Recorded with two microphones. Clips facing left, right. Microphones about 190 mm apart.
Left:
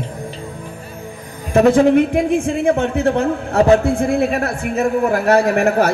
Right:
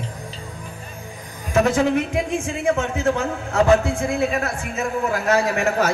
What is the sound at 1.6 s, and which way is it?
A man's voice, 55° left (ahead or behind).